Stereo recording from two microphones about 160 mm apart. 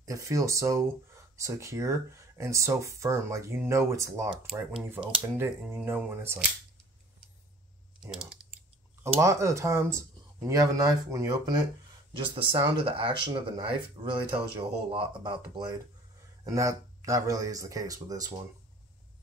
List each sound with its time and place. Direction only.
0.0 s speech: 20° right (ahead or behind)
9.0 s speech: 20° right (ahead or behind)
12.4 s speech: 35° right (ahead or behind)